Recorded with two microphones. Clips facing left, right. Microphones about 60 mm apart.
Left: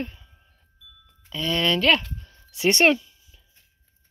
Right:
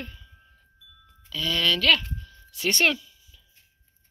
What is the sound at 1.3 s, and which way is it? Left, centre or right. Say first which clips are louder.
Speech: left 2 dB; left.